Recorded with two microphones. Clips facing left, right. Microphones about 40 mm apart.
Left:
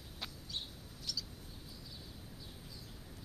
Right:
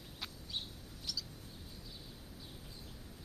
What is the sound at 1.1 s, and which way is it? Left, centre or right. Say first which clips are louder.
Bird: even; centre.